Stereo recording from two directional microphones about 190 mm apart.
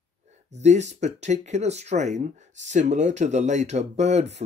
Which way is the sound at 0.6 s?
35° right (ahead or behind).